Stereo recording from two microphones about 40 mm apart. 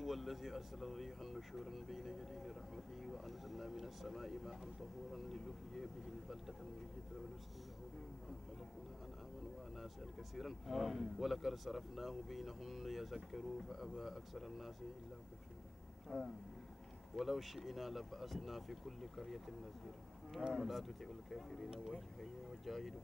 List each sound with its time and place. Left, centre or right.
0.0 s speech: centre
10.3 s speech: centre
16.1 s speech: left
17.1 s speech: centre
20.4 s speech: centre